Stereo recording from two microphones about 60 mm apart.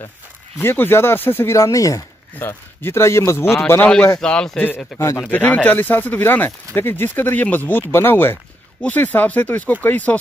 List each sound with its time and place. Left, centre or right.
0.6 s speech: left
1.5 s speech: left
2.3 s speech: left
4.2 s a man's voice: centre
4.6 s speech: left
4.9 s speech: left
5.3 s speech: left